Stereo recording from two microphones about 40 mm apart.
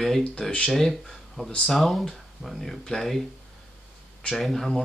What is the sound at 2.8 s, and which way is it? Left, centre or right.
Speech, centre.